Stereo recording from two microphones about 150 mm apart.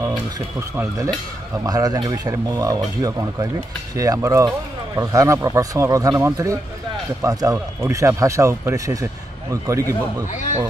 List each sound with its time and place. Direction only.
0.0 s speech: 20° right (ahead or behind)